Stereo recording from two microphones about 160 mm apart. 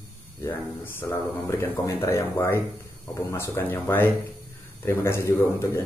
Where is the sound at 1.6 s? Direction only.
15° left (ahead or behind).